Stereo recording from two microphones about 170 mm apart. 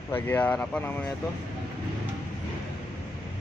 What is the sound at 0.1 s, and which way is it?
Speech, 10° left (ahead or behind).